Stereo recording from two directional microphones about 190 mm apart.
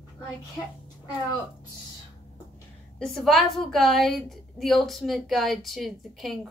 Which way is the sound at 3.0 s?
Centre (ahead or behind).